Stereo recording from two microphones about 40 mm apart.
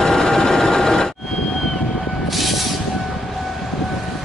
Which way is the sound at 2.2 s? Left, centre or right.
Centre.